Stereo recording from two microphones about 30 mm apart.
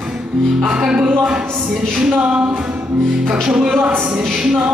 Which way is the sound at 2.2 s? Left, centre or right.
Right.